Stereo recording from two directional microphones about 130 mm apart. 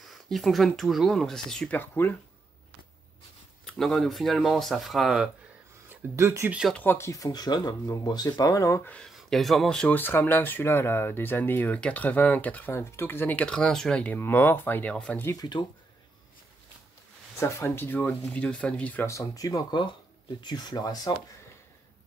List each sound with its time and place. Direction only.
0.0 s speech: centre (ahead or behind)
1.8 s speech: 15° left (ahead or behind)
3.6 s speech: 5° left (ahead or behind)
5.9 s speech: 20° right (ahead or behind)
6.7 s speech: 15° left (ahead or behind)
8.8 s speech: 10° left (ahead or behind)
15.3 s speech: 35° left (ahead or behind)
17.4 s speech: 20° left (ahead or behind)
19.0 s speech: 25° left (ahead or behind)